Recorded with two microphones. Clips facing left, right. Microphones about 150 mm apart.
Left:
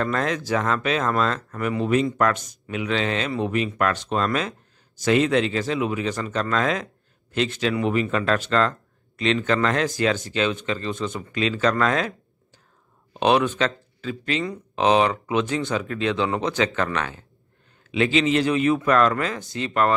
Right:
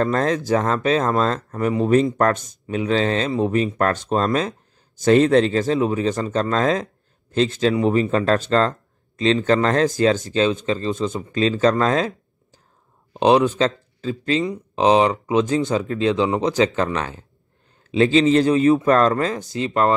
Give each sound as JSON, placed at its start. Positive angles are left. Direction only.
{"t": 0.0, "sound": "speech", "side_deg": -30}
{"t": 2.1, "sound": "speech", "side_deg": -45}
{"t": 2.4, "sound": "speech", "side_deg": -30}
{"t": 13.1, "sound": "speech", "side_deg": -25}